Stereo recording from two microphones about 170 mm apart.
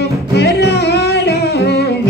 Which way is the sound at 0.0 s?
75° left (ahead or behind).